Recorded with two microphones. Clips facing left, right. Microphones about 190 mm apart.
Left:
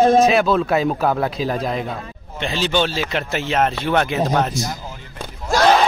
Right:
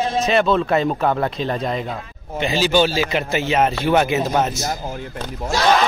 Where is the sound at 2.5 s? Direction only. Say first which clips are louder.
Right 3 dB; 5° right (ahead or behind).